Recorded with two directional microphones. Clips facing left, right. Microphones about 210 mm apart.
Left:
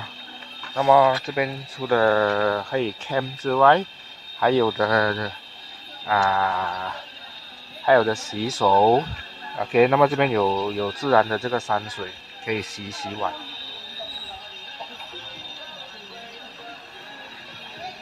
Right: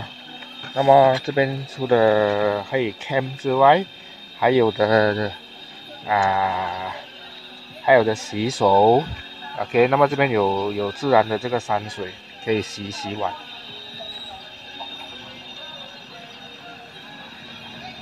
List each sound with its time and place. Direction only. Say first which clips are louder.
0.7 s speech: right 3 dB; 25° right (ahead or behind)
9.6 s speech: even; centre (ahead or behind)
12.4 s speech: right 5 dB; 25° right (ahead or behind)